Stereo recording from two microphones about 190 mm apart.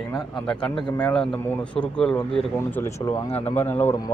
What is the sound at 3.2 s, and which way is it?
Speech, 30° left (ahead or behind).